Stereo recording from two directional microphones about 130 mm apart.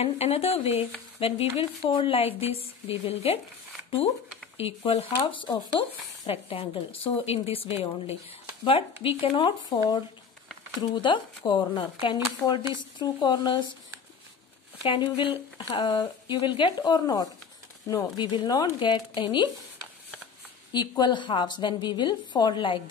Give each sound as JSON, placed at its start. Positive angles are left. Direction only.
{"t": 0.0, "sound": "speech", "side_deg": 50}
{"t": 4.6, "sound": "speech", "side_deg": 50}
{"t": 6.3, "sound": "a woman's voice", "side_deg": 50}
{"t": 10.8, "sound": "a woman's voice", "side_deg": 35}
{"t": 12.4, "sound": "speech", "side_deg": 0}
{"t": 13.0, "sound": "a woman's voice", "side_deg": 35}
{"t": 14.8, "sound": "a woman's voice", "side_deg": 45}
{"t": 20.7, "sound": "a woman's voice", "side_deg": 35}